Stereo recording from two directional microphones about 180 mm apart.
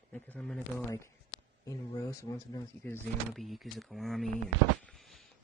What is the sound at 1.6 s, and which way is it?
Speech, 15° left (ahead or behind).